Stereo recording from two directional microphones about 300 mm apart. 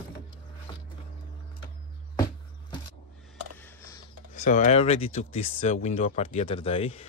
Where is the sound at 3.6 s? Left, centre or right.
Centre.